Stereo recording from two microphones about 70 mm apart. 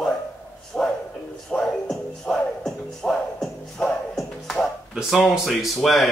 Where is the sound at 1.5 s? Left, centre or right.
Centre.